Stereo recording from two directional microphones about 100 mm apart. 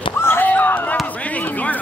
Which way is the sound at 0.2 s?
20° left (ahead or behind).